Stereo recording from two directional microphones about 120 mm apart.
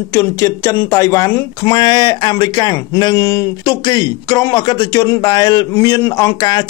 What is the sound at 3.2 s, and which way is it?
Speech, 25° left (ahead or behind).